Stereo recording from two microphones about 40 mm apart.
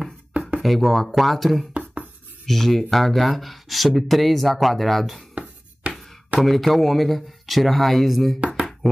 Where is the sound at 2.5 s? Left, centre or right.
Centre.